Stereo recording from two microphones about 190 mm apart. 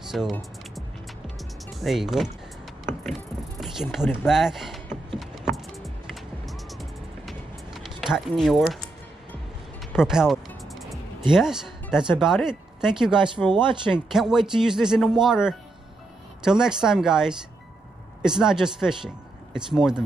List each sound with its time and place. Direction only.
0.1 s music: centre (ahead or behind)
4.3 s a man's voice: centre (ahead or behind)
5.2 s a sound: centre (ahead or behind)
6.4 s music: centre (ahead or behind)
11.3 s speech: 5° right (ahead or behind)
13.5 s speech: 25° right (ahead or behind)
14.1 s a man's voice: centre (ahead or behind)